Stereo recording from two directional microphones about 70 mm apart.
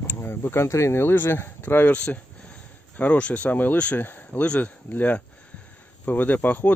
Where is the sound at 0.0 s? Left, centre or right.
Left.